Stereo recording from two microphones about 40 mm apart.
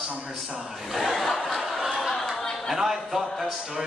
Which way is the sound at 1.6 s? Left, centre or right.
Centre.